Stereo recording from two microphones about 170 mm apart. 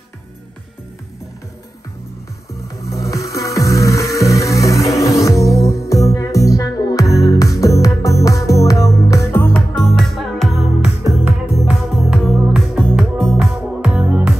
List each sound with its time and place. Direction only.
3.0 s music: 20° left (ahead or behind)
4.8 s music: centre (ahead or behind)
5.3 s music: 20° left (ahead or behind)
9.8 s music: centre (ahead or behind)